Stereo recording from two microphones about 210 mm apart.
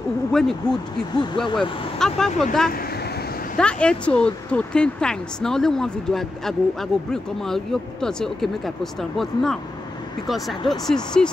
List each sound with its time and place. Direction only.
0.3 s speech: centre (ahead or behind)
1.1 s speech: 20° left (ahead or behind)
2.0 s speech: centre (ahead or behind)
10.7 s speech: centre (ahead or behind)